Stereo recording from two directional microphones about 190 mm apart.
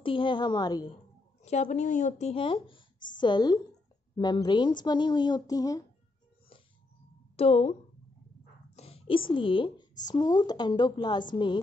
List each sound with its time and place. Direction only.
0.0 s speech: 25° left (ahead or behind)
1.4 s speech: 35° left (ahead or behind); by 5.9 s 20° left (ahead or behind)
7.3 s speech: 30° left (ahead or behind)
8.7 s speech: 30° left (ahead or behind)